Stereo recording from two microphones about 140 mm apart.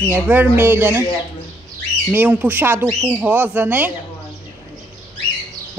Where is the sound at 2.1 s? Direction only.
10° right (ahead or behind).